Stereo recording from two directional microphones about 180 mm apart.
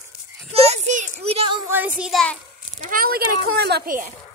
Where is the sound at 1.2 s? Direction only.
30° right (ahead or behind).